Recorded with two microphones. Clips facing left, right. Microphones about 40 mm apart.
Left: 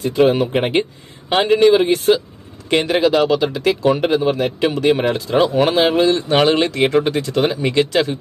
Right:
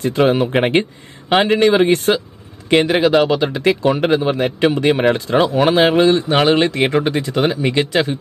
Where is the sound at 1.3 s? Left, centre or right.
Centre.